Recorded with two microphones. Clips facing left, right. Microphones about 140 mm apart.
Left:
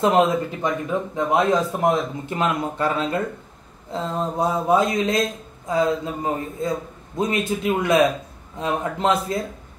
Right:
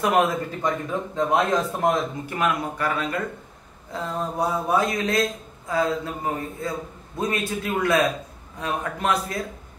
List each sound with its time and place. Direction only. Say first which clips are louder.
0.0 s a man's voice: left 3 dB; 25° left (ahead or behind)